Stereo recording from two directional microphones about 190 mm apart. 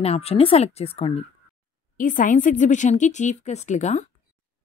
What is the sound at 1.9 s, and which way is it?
Speech, 45° left (ahead or behind).